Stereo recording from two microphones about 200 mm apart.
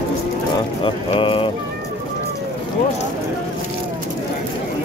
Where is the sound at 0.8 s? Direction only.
25° left (ahead or behind).